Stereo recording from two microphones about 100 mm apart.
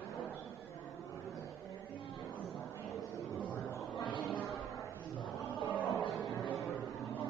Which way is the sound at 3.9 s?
50° left (ahead or behind).